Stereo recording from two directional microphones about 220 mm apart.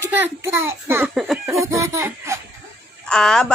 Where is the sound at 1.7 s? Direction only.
15° right (ahead or behind).